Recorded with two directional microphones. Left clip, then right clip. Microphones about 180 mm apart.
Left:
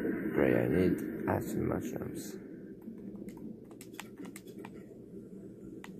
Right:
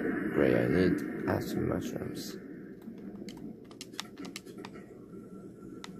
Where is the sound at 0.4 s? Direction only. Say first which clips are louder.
Right 2 dB; 20° right (ahead or behind).